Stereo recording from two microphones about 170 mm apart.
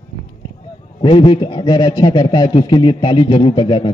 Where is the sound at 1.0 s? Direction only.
30° left (ahead or behind).